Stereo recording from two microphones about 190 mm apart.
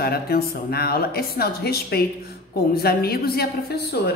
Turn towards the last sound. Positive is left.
turn(degrees=55)  # may be behind; listen again after turning